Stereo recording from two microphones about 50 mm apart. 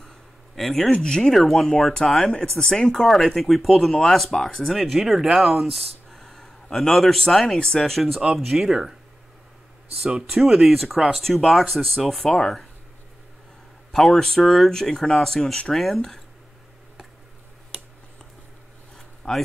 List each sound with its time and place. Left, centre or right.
0.6 s speech: centre
1.3 s speech: centre
10.3 s speech: centre
14.1 s speech: centre
19.2 s speech: centre